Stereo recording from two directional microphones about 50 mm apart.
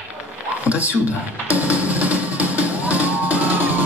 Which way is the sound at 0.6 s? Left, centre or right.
Right.